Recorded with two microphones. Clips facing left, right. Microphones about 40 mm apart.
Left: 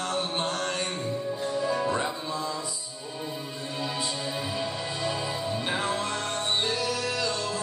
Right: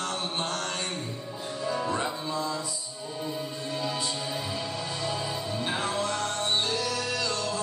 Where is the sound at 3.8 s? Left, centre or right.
Centre.